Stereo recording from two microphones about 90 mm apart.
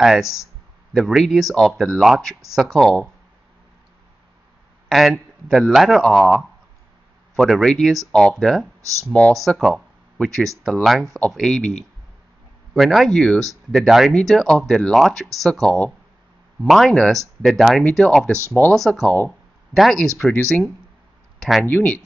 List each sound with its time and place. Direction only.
0.0 s speech: 5° right (ahead or behind)
4.8 s speech: centre (ahead or behind)
12.7 s speech: centre (ahead or behind)
21.4 s speech: centre (ahead or behind)
21.6 s speech: 20° left (ahead or behind)